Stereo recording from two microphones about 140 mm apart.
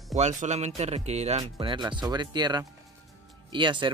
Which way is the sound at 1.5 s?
35° right (ahead or behind).